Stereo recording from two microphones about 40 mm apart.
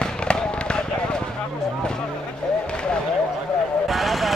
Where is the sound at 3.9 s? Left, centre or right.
Centre.